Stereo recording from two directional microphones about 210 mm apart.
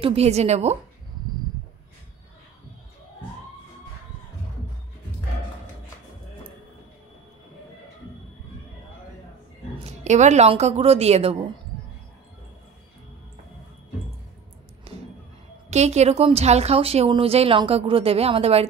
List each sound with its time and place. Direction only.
0.0 s speech: 30° right (ahead or behind)
9.8 s speech: 35° right (ahead or behind)
14.9 s a sound: 30° right (ahead or behind)
15.7 s a woman's voice: 30° right (ahead or behind)